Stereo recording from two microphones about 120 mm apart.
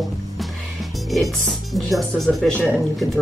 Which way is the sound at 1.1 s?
Centre (ahead or behind).